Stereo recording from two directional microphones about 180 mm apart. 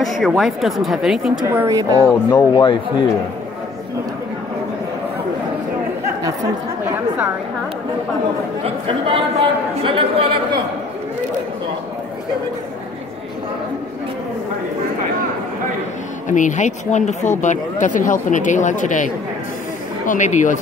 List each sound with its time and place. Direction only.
0.0 s a woman's voice: centre (ahead or behind); by 2.0 s 20° right (ahead or behind)
2.3 s speech: 25° left (ahead or behind)
8.6 s speech: 30° right (ahead or behind)
16.3 s speech: 45° left (ahead or behind)
20.1 s speech: 45° left (ahead or behind)